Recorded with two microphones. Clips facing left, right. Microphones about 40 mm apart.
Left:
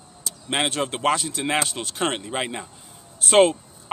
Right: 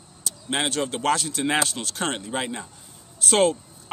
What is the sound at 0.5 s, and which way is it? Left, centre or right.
Speech, left.